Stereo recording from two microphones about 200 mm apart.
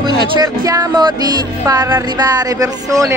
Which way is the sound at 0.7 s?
20° right (ahead or behind).